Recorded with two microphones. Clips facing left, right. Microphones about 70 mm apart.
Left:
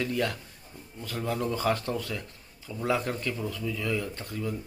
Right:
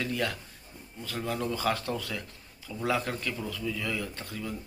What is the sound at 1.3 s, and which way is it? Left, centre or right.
A man's voice, left.